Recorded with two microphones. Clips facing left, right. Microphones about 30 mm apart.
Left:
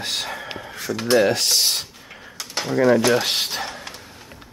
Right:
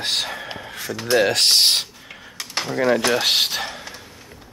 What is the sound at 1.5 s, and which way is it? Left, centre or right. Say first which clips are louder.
Speech: right 4 dB; right.